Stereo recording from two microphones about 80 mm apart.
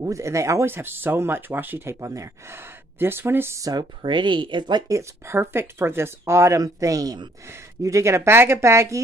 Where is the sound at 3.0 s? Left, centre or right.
Right.